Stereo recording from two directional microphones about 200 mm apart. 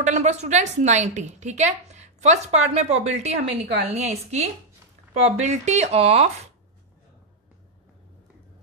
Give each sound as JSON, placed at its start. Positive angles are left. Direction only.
{"t": 0.0, "sound": "a woman's voice", "side_deg": -35}